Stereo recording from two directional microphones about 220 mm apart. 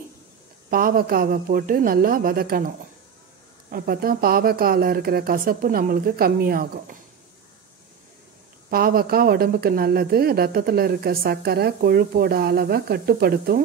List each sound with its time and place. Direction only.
0.7 s speech: 40° right (ahead or behind)
3.7 s speech: 40° right (ahead or behind)
8.6 s speech: 40° right (ahead or behind)